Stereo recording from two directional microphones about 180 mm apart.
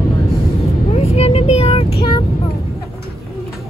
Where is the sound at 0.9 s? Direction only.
35° left (ahead or behind).